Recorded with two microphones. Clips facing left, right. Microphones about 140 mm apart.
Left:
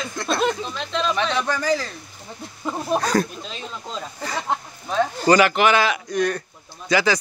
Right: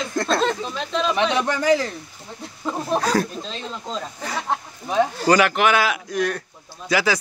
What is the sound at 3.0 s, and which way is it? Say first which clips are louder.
Speech: even; 5° right (ahead or behind).